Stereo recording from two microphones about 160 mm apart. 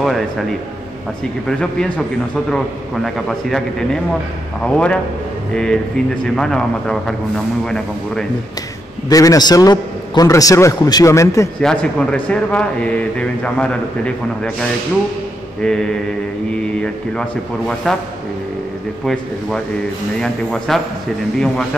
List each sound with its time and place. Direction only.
0.0 s a man's voice: centre (ahead or behind)
1.6 s a man's voice: 5° left (ahead or behind)
9.1 s a man's voice: 20° left (ahead or behind)
11.6 s a man's voice: 5° left (ahead or behind)
20.2 s a man's voice: centre (ahead or behind)